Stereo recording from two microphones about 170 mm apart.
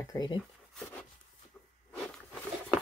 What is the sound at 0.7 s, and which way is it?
Wood, 5° left (ahead or behind).